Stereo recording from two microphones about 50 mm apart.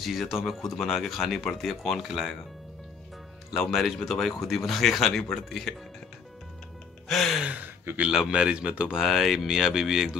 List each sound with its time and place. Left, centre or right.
0.0 s speech: centre
2.0 s speech: centre
3.5 s speech: centre
7.1 s music: centre
7.4 s speech: right
8.3 s speech: centre
8.9 s speech: centre